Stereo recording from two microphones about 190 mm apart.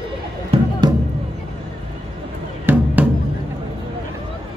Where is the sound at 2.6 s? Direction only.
10° right (ahead or behind).